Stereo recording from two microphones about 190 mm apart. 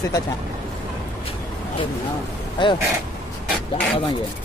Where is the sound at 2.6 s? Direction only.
25° left (ahead or behind).